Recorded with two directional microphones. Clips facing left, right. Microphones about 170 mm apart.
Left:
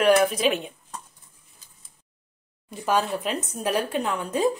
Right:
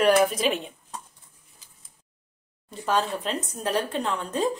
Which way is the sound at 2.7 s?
10° left (ahead or behind).